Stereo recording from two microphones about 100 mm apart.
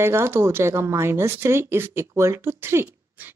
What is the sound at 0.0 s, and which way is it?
Speech, 25° right (ahead or behind).